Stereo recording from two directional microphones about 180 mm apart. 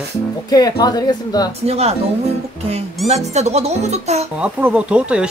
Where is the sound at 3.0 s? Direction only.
35° right (ahead or behind).